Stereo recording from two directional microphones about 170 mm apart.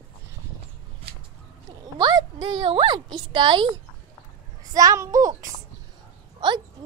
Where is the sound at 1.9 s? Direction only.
25° right (ahead or behind).